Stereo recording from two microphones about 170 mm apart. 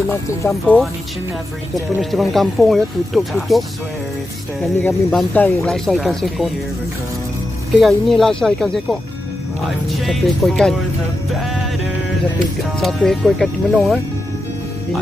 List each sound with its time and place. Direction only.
0.3 s speech: 15° left (ahead or behind)
2.0 s speech: centre (ahead or behind)
4.7 s speech: 10° left (ahead or behind)
7.8 s speech: centre (ahead or behind)
12.8 s speech: centre (ahead or behind)